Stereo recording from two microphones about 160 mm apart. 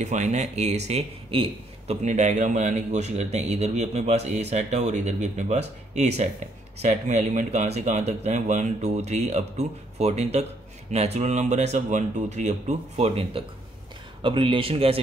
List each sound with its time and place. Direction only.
0.0 s speech: 50° right (ahead or behind)
2.0 s speech: 50° right (ahead or behind)